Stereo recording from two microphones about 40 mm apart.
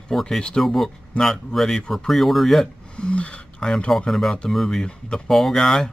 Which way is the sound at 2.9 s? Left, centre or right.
Left.